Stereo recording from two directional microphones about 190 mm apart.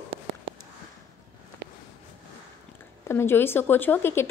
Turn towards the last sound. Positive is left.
turn(degrees=10)  # may be behind; listen again after turning